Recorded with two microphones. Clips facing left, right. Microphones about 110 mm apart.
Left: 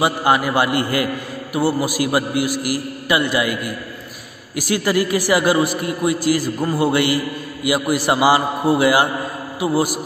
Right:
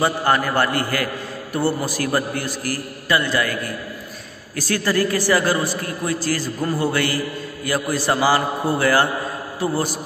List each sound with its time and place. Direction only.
0.0 s a man's voice: 15° left (ahead or behind)